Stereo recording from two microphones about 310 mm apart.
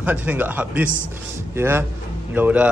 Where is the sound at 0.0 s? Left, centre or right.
Centre.